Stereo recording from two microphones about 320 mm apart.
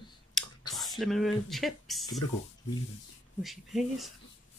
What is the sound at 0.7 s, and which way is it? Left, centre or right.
Speech, centre.